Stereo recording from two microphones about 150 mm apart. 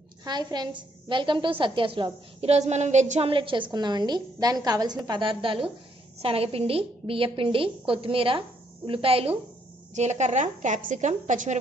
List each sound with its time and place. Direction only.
0.2 s a woman's voice: 30° right (ahead or behind)
9.9 s a woman's voice: 50° right (ahead or behind)